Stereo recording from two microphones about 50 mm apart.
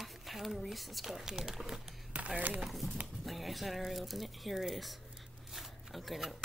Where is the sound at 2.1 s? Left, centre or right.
Right.